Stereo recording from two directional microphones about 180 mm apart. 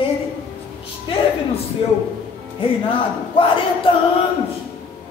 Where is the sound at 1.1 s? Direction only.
30° left (ahead or behind).